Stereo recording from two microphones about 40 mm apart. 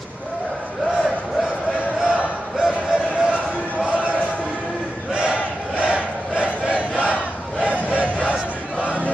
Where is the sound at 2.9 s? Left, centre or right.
Right.